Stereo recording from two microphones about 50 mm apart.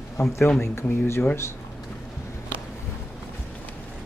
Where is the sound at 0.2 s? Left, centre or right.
Left.